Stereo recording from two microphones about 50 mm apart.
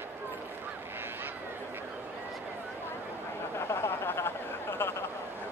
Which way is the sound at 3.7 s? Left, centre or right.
Left.